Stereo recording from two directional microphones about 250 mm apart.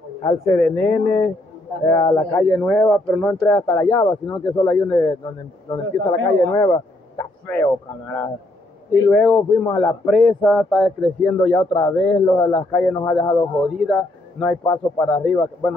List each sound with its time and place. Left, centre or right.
0.2 s speech: centre
13.1 s speech: centre
13.7 s speech: centre